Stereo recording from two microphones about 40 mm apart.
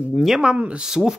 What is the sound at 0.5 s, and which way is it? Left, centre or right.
Speech, right.